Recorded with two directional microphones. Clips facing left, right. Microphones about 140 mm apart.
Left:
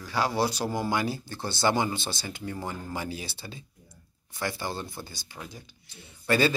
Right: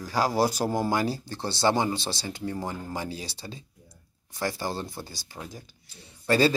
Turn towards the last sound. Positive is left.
turn(degrees=-35)  # may be behind; listen again after turning